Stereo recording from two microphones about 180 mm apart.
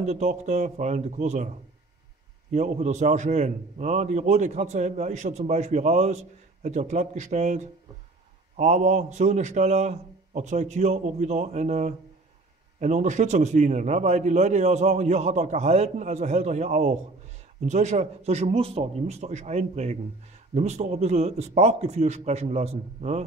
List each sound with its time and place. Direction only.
0.0 s a man's voice: 40° right (ahead or behind)
2.5 s a man's voice: 40° right (ahead or behind)